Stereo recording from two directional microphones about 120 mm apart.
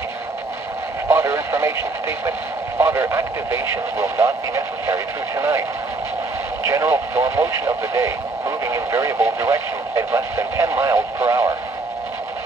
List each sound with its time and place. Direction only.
1.0 s radio: 25° right (ahead or behind)
2.8 s speech: 20° right (ahead or behind)
6.6 s speech: 25° right (ahead or behind)